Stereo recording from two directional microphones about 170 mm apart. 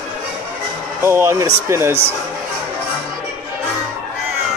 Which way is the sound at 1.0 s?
15° right (ahead or behind).